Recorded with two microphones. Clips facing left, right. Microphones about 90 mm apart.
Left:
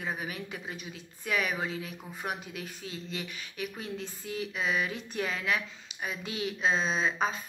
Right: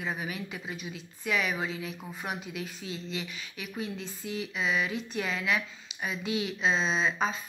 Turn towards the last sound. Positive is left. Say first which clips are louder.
# right 1 dB
turn(degrees=45)  # may be behind; listen again after turning